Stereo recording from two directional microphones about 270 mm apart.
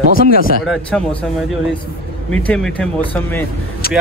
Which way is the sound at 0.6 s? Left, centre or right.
Centre.